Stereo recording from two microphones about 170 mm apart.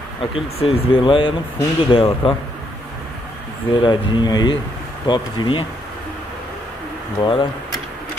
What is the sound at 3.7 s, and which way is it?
Speech, 30° left (ahead or behind).